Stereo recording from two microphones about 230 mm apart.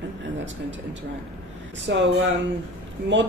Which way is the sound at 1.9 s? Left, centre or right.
Right.